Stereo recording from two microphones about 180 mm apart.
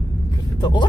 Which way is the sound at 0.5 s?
25° left (ahead or behind).